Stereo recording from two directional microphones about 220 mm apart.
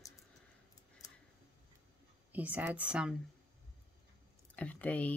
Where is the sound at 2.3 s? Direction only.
10° right (ahead or behind).